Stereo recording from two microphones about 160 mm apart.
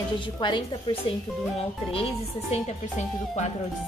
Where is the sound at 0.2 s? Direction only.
30° left (ahead or behind).